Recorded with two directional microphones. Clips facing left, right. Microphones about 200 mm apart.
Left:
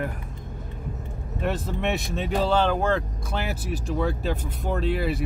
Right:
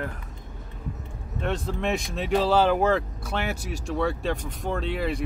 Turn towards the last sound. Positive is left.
turn(degrees=5)  # may be behind; listen again after turning